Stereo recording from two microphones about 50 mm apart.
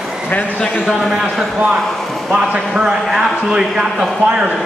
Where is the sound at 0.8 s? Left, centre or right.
Centre.